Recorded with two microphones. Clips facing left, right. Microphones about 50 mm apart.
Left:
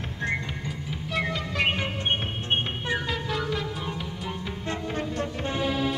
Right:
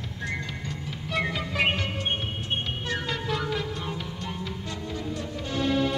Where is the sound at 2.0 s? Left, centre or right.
Left.